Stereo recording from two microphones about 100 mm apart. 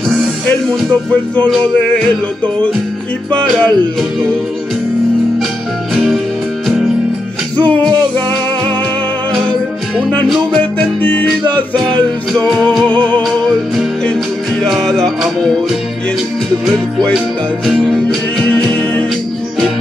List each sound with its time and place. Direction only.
1.5 s music: 5° left (ahead or behind)
3.3 s music: 5° left (ahead or behind)
9.3 s music: 5° left (ahead or behind)
10.6 s music: 15° left (ahead or behind)
12.8 s music: 15° left (ahead or behind)
14.6 s music: 5° left (ahead or behind)
16.6 s music: 5° left (ahead or behind)
18.4 s music: 10° left (ahead or behind)